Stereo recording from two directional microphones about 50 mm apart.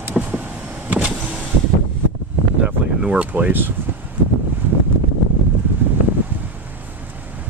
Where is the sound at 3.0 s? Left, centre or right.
Right.